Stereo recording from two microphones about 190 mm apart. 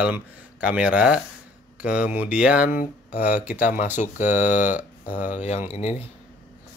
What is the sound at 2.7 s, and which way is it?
Speech, 45° left (ahead or behind).